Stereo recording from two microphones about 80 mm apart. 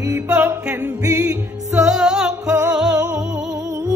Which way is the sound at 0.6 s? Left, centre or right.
Centre.